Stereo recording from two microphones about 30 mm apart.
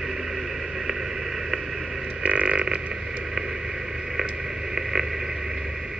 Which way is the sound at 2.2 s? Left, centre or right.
Right.